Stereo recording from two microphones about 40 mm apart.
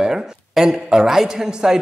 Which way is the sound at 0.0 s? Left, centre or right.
Centre.